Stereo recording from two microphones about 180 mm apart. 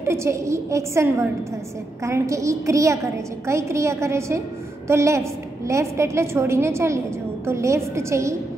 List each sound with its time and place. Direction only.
0.0 s a woman's voice: 15° right (ahead or behind)